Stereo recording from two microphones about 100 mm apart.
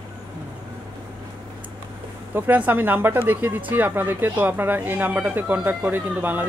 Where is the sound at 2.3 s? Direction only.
20° right (ahead or behind).